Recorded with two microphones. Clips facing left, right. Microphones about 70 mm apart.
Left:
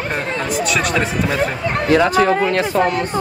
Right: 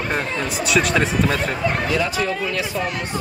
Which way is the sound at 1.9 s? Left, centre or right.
Left.